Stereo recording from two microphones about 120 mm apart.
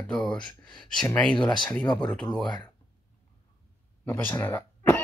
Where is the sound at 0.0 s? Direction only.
10° left (ahead or behind).